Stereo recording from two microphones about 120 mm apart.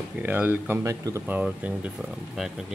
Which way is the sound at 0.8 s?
25° right (ahead or behind).